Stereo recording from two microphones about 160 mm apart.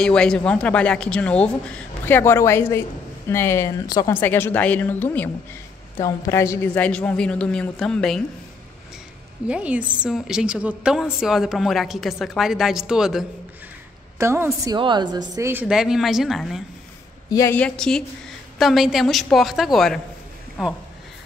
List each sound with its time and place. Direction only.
0.0 s speech: 5° left (ahead or behind)
9.5 s a woman's voice: 10° right (ahead or behind)
14.1 s a woman's voice: 15° right (ahead or behind)
15.6 s a woman's voice: 5° right (ahead or behind)
17.3 s a woman's voice: 20° left (ahead or behind)
17.6 s a woman's voice: 5° left (ahead or behind)